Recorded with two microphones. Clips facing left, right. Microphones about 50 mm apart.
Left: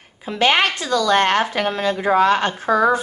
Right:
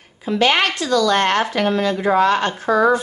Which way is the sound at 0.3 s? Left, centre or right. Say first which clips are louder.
Even; left.